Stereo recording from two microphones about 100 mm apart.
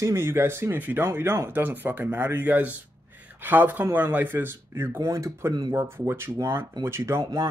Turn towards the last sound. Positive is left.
turn(degrees=-25)  # may be behind; listen again after turning